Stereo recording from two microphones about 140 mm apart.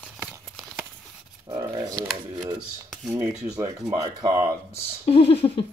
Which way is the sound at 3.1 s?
20° right (ahead or behind).